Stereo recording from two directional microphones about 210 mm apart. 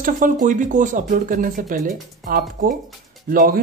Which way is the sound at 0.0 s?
40° right (ahead or behind).